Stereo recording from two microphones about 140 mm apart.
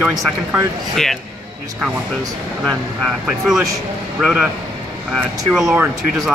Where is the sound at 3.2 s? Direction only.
5° right (ahead or behind).